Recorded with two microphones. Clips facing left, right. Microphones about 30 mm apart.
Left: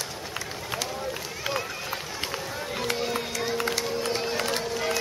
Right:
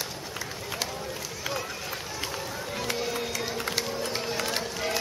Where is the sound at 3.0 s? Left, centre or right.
Centre.